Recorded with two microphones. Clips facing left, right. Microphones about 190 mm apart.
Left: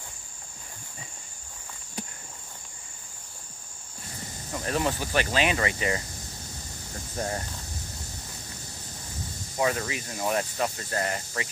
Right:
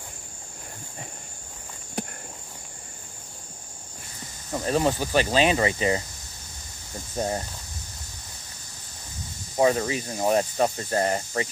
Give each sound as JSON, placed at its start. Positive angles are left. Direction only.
{"t": 4.6, "sound": "speech", "side_deg": -25}
{"t": 7.2, "sound": "speech", "side_deg": -25}
{"t": 9.6, "sound": "speech", "side_deg": -30}